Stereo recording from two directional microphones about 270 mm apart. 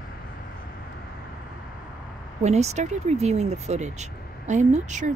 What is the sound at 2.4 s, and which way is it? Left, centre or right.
Speech, right.